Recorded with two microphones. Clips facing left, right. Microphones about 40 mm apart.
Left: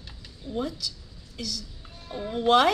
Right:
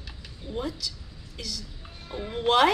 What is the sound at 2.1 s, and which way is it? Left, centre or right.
Speech, centre.